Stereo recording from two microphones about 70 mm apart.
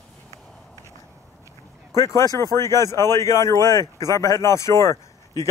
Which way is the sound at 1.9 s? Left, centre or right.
Left.